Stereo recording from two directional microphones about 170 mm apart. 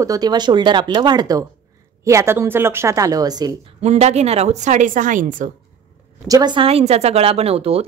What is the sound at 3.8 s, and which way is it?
A woman's voice, 40° right (ahead or behind).